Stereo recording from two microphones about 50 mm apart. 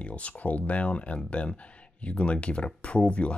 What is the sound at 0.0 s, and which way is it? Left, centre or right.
Speech, left.